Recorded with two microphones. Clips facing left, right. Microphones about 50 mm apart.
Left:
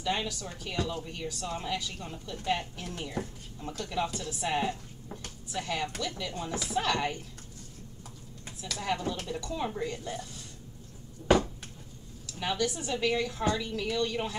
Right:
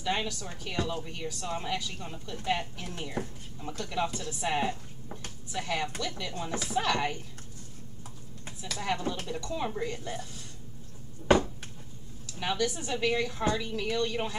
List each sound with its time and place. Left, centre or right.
0.1 s speech: centre
6.5 s speech: right
6.8 s speech: centre
8.8 s speech: centre
11.2 s a sound: right
12.4 s speech: centre